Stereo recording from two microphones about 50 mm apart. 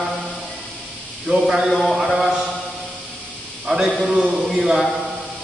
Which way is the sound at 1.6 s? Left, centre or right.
Centre.